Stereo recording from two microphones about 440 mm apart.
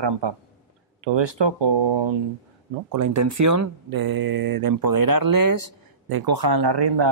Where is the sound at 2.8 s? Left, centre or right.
Right.